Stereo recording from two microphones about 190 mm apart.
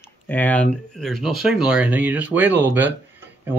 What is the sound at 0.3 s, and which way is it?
Speech, 10° left (ahead or behind).